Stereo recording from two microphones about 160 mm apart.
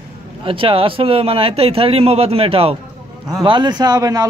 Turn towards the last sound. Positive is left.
turn(degrees=-25)  # may be behind; listen again after turning